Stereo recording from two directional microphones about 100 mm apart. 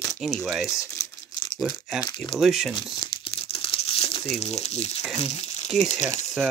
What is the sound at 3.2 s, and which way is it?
Crumpling, 70° left (ahead or behind).